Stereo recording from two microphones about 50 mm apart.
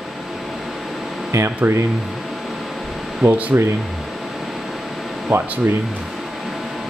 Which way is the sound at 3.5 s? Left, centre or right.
Right.